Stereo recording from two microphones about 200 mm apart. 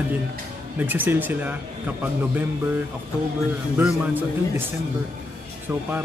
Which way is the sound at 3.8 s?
5° right (ahead or behind).